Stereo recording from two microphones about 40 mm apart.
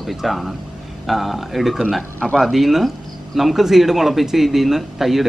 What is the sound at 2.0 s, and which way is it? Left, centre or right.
Speech, left.